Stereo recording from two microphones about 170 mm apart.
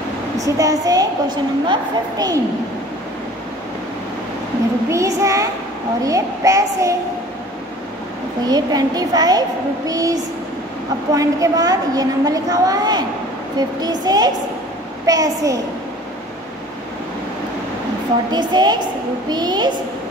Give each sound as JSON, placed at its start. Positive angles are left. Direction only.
{"t": 0.4, "sound": "a woman's voice", "side_deg": -20}
{"t": 4.8, "sound": "a woman's voice", "side_deg": -20}
{"t": 8.5, "sound": "a woman's voice", "side_deg": -25}
{"t": 18.3, "sound": "a woman's voice", "side_deg": -25}